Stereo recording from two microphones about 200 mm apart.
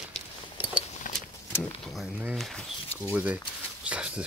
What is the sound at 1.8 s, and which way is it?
Speech, centre (ahead or behind).